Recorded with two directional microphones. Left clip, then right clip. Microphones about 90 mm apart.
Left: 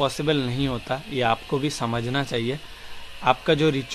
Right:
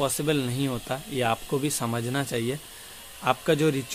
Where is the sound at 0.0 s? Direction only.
40° right (ahead or behind).